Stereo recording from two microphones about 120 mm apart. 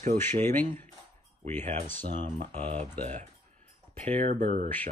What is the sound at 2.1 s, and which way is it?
Speech, 40° right (ahead or behind).